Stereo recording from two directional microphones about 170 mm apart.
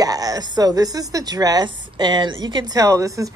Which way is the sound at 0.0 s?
20° right (ahead or behind).